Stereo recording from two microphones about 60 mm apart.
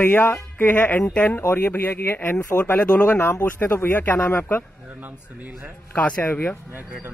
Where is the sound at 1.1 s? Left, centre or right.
Centre.